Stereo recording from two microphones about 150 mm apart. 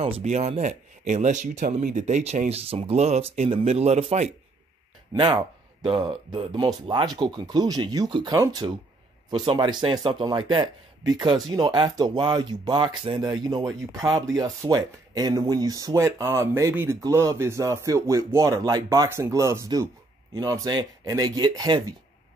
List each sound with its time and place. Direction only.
0.0 s speech: 50° right (ahead or behind)
5.1 s speech: 30° right (ahead or behind)